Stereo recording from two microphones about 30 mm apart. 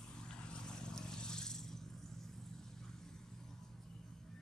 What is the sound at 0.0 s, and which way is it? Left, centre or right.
Vehicle, left.